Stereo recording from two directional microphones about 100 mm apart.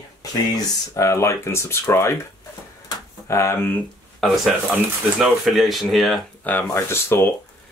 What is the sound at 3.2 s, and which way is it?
Speech, 30° left (ahead or behind).